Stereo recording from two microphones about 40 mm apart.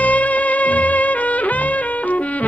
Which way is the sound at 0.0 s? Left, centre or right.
Left.